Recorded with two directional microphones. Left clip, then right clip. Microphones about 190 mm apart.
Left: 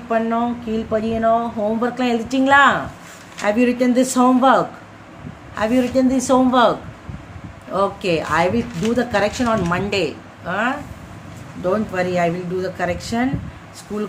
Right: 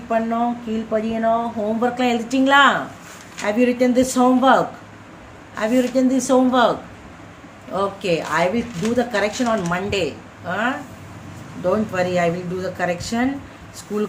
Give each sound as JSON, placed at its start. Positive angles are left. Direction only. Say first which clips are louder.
{"t": 0.1, "sound": "speech", "louder": "left 1 dB", "side_deg": 10}
{"t": 11.6, "sound": "speech", "louder": "even", "side_deg": 5}